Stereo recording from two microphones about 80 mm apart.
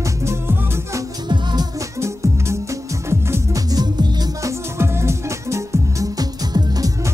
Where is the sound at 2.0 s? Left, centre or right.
Right.